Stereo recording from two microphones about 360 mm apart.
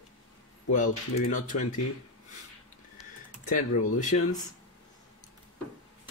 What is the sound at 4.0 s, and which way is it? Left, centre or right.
Speech, left.